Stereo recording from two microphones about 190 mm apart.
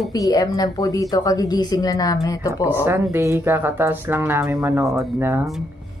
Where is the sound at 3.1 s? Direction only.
15° right (ahead or behind).